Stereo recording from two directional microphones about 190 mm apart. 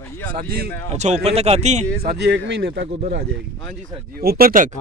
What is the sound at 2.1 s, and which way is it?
Speech, 65° right (ahead or behind).